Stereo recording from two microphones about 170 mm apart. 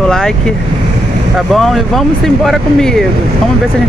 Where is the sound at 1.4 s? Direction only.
Centre (ahead or behind).